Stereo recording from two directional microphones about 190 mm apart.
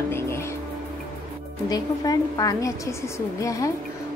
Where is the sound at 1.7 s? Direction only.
20° left (ahead or behind).